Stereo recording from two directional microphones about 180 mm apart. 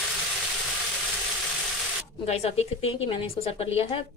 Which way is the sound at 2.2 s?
35° left (ahead or behind).